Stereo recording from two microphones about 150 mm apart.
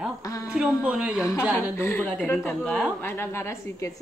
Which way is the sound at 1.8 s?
15° left (ahead or behind).